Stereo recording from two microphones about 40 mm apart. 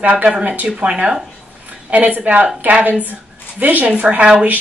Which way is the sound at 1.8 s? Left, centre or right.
Right.